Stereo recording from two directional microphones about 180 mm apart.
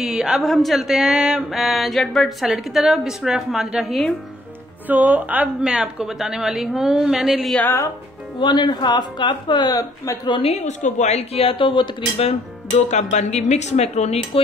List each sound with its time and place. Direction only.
0.0 s speech: 5° right (ahead or behind)
8.4 s speech: 25° left (ahead or behind)